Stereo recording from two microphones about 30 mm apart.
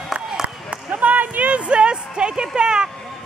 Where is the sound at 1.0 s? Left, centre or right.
Right.